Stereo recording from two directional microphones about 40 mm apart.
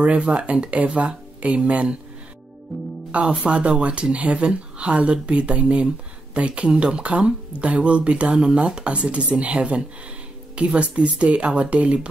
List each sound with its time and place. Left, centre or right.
0.0 s speech: right
3.1 s speech: right